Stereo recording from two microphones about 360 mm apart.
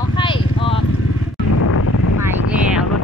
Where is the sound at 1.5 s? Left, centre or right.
Left.